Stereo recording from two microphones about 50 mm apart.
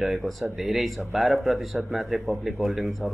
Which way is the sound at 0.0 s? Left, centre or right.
Centre.